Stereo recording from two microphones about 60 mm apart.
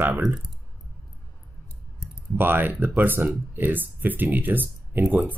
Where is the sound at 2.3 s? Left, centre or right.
Right.